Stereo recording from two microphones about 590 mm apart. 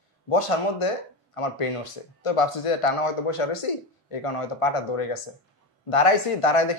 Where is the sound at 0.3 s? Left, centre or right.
Left.